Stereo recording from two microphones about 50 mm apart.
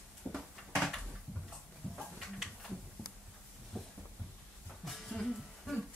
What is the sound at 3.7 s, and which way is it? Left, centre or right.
Heart sounds, centre.